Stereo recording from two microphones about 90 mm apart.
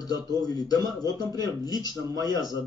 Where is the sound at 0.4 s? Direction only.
45° left (ahead or behind).